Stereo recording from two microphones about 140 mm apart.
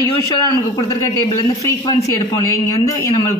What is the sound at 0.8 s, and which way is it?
Speech, 25° left (ahead or behind).